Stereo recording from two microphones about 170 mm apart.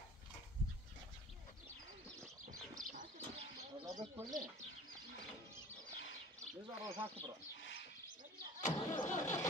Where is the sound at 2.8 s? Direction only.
50° right (ahead or behind).